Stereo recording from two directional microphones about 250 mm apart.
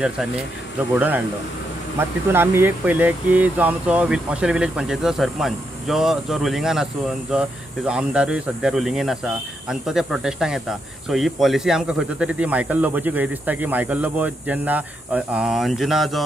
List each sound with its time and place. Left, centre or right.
0.9 s speech: centre